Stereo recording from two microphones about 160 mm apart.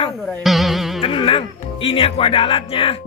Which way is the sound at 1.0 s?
35° left (ahead or behind).